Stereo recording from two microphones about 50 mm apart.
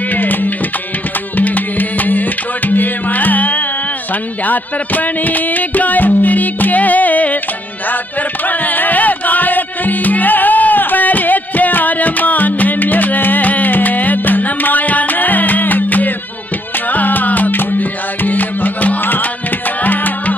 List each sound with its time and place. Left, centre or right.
0.1 s music: left
8.5 s music: left